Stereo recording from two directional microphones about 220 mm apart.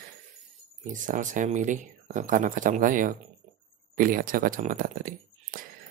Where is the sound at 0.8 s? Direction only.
35° right (ahead or behind).